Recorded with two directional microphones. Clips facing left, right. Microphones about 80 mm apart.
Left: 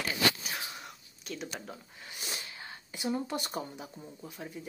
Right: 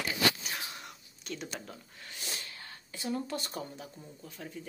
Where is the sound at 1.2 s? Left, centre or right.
Centre.